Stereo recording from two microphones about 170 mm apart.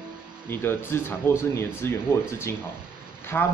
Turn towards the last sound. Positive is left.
turn(degrees=10)  # may be behind; listen again after turning